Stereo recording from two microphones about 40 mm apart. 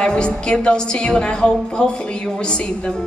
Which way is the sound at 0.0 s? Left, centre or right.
Left.